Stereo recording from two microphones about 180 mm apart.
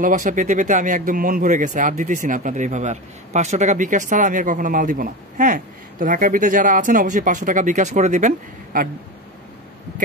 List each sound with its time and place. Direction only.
0.0 s speech: 45° right (ahead or behind)